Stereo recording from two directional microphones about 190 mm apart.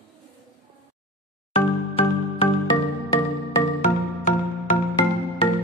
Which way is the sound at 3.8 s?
40° left (ahead or behind).